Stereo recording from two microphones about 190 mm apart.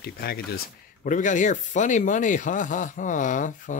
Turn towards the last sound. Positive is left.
turn(degrees=40)  # may be behind; listen again after turning